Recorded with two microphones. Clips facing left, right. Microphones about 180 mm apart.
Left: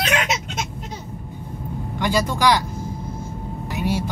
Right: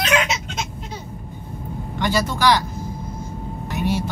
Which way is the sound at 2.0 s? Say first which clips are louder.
Even; 10° left (ahead or behind).